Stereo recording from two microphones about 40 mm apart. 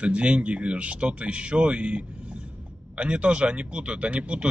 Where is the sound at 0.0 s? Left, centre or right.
Right.